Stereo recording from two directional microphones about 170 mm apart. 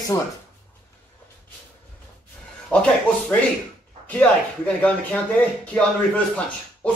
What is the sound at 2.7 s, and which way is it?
Speech, 5° left (ahead or behind).